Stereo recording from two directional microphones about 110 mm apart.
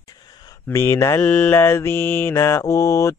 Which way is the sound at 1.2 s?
10° left (ahead or behind).